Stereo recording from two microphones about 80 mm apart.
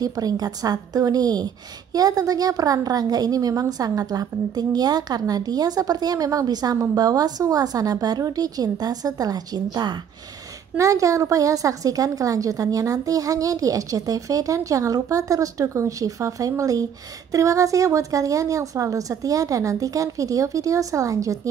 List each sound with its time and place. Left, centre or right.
0.0 s a woman's voice: right
10.8 s a woman's voice: right